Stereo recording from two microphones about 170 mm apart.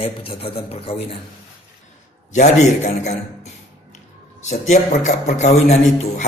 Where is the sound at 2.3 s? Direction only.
45° left (ahead or behind).